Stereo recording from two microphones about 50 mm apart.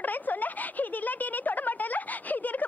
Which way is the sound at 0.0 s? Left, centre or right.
Left.